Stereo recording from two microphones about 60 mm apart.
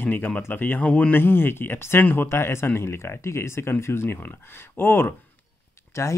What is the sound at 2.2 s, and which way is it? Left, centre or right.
Speech, left.